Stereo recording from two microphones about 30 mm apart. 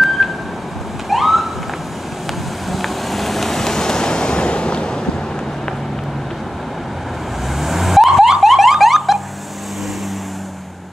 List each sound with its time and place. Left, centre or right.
0.2 s vehicle: centre
1.1 s police car: centre
2.7 s vehicle: centre; by 5.0 s left
7.6 s vehicle: centre
8.1 s car alarm: centre
8.4 s car alarm: centre